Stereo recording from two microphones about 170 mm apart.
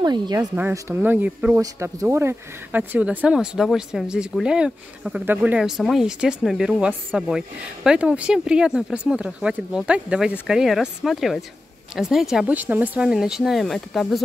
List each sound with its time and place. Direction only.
0.0 s speech: 25° right (ahead or behind)
0.6 s speech: 15° right (ahead or behind)